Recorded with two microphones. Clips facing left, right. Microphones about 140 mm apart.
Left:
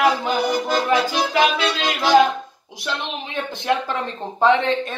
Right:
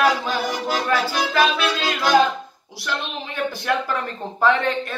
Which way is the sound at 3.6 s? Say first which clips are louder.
Left 4 dB; 20° left (ahead or behind).